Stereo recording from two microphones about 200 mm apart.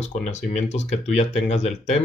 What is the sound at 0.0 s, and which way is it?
Speech, 35° left (ahead or behind).